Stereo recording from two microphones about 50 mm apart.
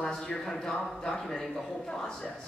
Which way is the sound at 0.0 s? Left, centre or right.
Centre.